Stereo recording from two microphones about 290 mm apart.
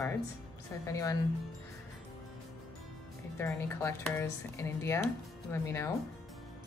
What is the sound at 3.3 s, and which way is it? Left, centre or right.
Speech, centre.